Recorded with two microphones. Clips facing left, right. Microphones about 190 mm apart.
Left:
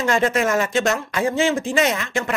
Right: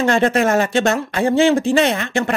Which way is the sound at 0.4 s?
35° right (ahead or behind).